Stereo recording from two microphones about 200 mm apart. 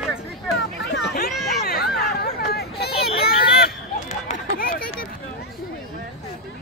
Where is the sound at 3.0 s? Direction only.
50° left (ahead or behind).